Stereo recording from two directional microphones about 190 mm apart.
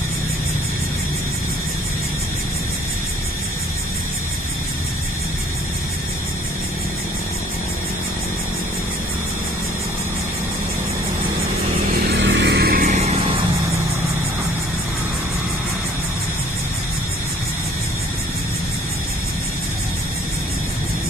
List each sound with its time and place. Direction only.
12.1 s vehicle: 70° right (ahead or behind); by 13.0 s 50° right (ahead or behind)